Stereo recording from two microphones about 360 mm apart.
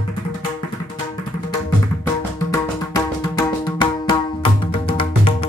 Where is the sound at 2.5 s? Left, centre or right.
Centre.